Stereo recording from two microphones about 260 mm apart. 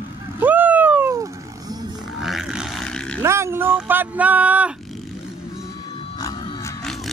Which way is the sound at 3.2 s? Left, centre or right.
Centre.